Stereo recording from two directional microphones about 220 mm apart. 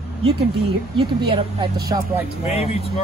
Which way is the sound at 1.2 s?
20° right (ahead or behind).